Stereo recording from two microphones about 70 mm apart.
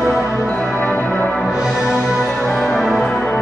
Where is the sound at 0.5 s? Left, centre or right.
Centre.